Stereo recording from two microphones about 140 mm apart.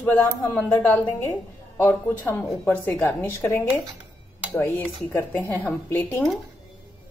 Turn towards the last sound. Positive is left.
turn(degrees=15)  # may be behind; listen again after turning